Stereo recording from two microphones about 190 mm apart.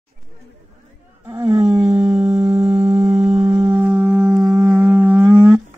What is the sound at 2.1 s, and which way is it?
Music, 35° right (ahead or behind).